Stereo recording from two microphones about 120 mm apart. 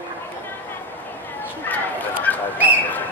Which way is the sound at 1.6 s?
15° left (ahead or behind).